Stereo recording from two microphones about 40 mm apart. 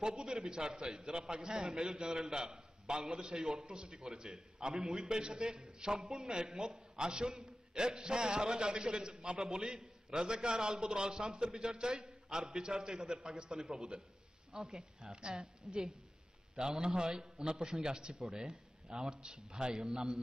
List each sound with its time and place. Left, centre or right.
0.0 s a man's voice: centre
13.5 s speech: centre
15.1 s a man's voice: right